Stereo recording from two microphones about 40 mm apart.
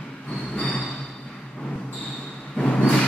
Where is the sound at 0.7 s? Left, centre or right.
Left.